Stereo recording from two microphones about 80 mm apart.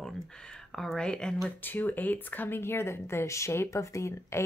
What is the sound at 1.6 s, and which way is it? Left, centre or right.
Speech, left.